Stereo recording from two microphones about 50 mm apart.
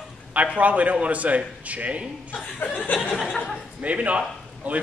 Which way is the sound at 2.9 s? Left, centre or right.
Left.